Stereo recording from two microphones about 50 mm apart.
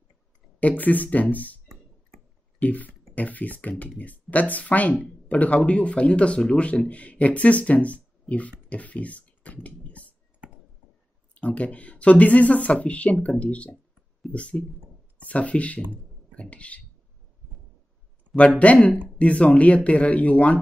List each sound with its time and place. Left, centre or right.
0.6 s speech: left
2.6 s speech: left
11.3 s speech: left
18.6 s speech: left